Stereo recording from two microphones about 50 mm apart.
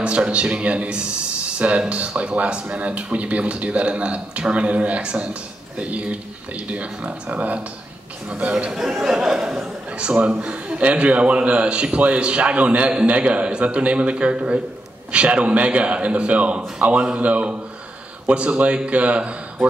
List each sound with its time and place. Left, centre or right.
0.0 s speech: right
8.7 s speech: centre
9.9 s speech: right